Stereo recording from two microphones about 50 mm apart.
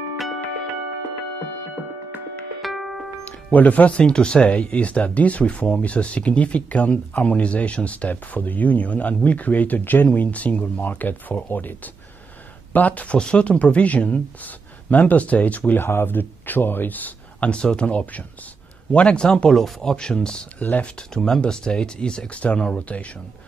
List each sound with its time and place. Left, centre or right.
2.6 s music: centre
3.5 s speech: left
15.8 s speech: left
17.5 s speech: centre